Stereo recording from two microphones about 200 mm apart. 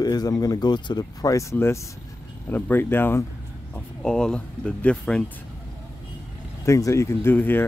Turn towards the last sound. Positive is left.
turn(degrees=10)  # may be behind; listen again after turning